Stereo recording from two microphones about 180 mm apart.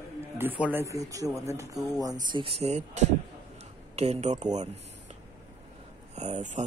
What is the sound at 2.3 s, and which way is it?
Speech, 30° right (ahead or behind).